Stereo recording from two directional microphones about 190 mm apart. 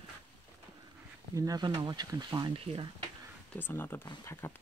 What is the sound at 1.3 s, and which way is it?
Speech, 20° right (ahead or behind).